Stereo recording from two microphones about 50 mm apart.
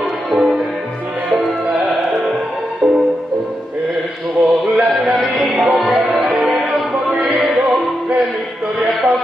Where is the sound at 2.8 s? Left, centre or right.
Right.